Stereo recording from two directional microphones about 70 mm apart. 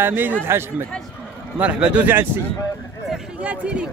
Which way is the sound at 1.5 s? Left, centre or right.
Centre.